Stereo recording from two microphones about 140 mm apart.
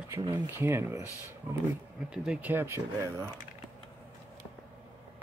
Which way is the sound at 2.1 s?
5° right (ahead or behind).